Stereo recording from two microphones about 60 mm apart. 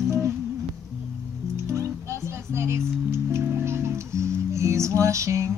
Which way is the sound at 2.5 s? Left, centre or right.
Right.